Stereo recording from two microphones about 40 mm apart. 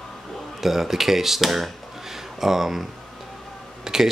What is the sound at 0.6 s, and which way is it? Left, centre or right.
Speech, centre.